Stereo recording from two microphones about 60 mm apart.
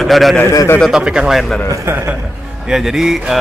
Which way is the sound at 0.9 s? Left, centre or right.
Centre.